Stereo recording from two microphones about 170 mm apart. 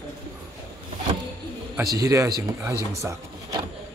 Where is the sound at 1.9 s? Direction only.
20° right (ahead or behind).